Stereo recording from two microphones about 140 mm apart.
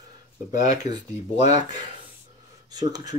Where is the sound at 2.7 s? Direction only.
30° right (ahead or behind).